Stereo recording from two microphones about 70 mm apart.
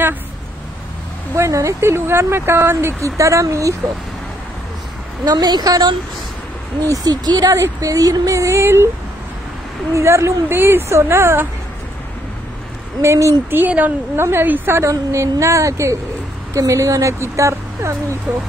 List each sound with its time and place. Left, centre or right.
1.3 s speech: right
5.2 s a woman's voice: right
6.9 s speech: right
7.5 s speech: right
9.9 s speech: right
13.0 s speech: right
13.5 s speech: right
14.1 s speech: right
14.8 s a woman's voice: right